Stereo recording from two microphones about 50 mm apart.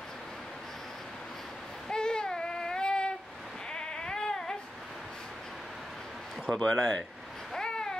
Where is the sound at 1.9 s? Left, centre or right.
Centre.